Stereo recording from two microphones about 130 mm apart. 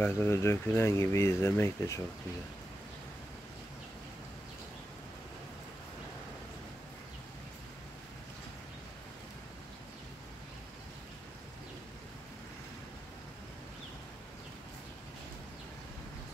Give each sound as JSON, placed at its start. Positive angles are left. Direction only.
{"t": 0.0, "sound": "speech", "side_deg": 20}